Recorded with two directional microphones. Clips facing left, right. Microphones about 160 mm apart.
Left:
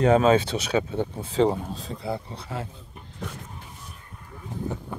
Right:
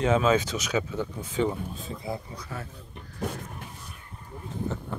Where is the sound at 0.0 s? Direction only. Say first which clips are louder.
Left 4 dB; 40° left (ahead or behind).